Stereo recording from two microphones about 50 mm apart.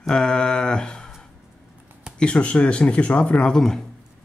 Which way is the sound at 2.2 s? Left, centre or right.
Left.